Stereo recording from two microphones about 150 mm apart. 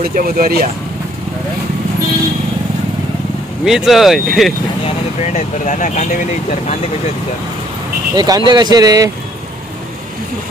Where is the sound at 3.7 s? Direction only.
Centre (ahead or behind).